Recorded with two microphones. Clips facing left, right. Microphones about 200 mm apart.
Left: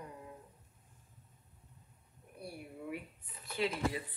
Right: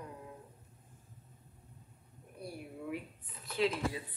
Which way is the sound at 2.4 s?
5° left (ahead or behind).